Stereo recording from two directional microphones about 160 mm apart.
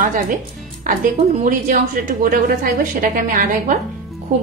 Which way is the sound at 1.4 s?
55° right (ahead or behind).